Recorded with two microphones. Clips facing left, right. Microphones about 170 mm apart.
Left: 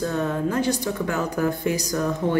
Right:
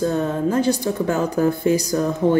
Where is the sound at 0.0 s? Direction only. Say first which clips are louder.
Right 4 dB; 30° right (ahead or behind).